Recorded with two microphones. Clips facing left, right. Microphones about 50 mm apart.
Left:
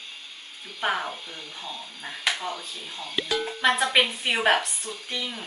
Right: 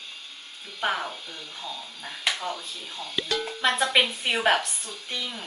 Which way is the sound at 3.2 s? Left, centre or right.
Centre.